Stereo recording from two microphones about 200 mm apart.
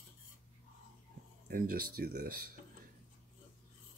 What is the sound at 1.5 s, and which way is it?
Speech, 50° right (ahead or behind).